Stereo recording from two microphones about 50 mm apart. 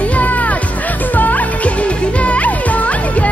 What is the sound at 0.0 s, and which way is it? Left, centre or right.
Music, left.